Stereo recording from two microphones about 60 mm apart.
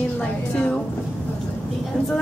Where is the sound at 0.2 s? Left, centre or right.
Centre.